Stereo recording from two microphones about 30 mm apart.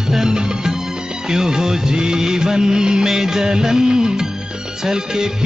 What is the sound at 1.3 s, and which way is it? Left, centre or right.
Music of bollywood, centre.